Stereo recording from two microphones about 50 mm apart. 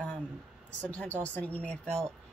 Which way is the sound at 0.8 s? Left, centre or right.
Left.